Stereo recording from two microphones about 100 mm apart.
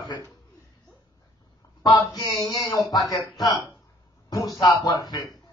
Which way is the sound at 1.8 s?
45° left (ahead or behind).